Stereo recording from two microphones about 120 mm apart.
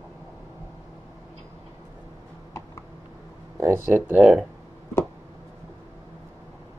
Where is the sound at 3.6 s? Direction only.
20° right (ahead or behind); by 4.5 s 5° right (ahead or behind).